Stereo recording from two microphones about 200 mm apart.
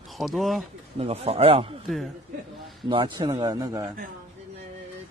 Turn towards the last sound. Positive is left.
turn(degrees=-20)  # may be behind; listen again after turning